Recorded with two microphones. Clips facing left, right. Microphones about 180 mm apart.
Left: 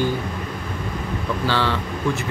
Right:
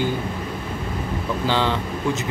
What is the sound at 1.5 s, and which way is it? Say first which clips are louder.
Speech: right 1 dB; 15° right (ahead or behind).